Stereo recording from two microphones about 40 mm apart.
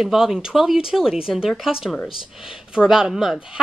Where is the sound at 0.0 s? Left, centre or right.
Centre.